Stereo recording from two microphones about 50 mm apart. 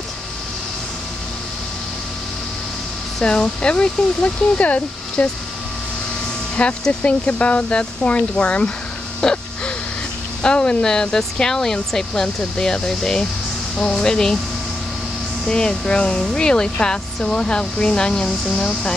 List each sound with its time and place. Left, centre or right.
3.3 s speech: centre
6.9 s speech: left
9.2 s speech: centre
10.4 s speech: centre
15.4 s speech: centre